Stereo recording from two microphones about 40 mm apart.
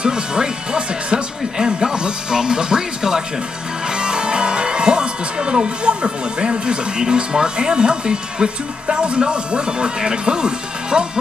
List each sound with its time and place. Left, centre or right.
0.0 s speech: right